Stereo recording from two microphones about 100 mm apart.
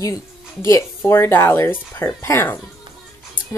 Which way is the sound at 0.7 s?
30° left (ahead or behind).